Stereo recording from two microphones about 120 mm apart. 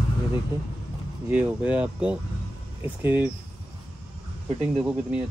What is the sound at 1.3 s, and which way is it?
Speech, 10° right (ahead or behind).